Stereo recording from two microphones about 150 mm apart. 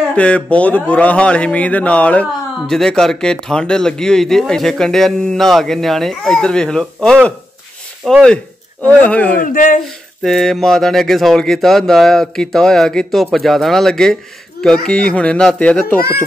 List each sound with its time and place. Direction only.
0.1 s a man's voice: 10° left (ahead or behind)
9.4 s speech: 65° left (ahead or behind)
10.2 s a man's voice: centre (ahead or behind)